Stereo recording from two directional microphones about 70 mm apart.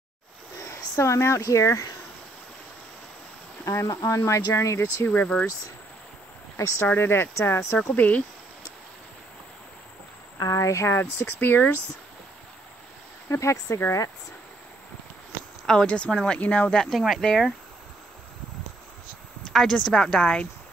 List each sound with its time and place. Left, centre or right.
0.7 s speech: left
3.6 s speech: left
5.0 s speech: left
6.5 s speech: left
7.9 s speech: left
10.4 s speech: left
11.0 s speech: left
13.3 s speech: left
15.6 s speech: centre
19.4 s speech: centre